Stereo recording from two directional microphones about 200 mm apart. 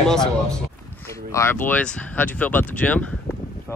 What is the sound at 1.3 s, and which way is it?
Speech, 10° left (ahead or behind).